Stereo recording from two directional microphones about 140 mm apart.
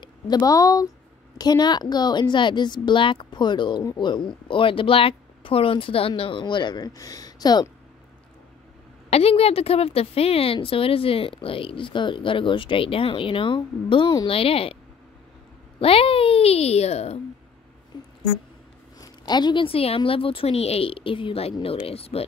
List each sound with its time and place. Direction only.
0.0 s a woman's voice: 30° left (ahead or behind)
9.1 s a woman's voice: 45° left (ahead or behind)
15.8 s a woman's voice: 40° left (ahead or behind)
17.9 s a sound: 30° left (ahead or behind)
18.9 s a woman's voice: 30° left (ahead or behind)